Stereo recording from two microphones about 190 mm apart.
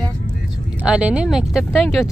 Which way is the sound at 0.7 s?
5° right (ahead or behind).